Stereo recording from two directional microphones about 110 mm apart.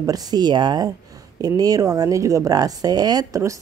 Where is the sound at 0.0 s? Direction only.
35° right (ahead or behind).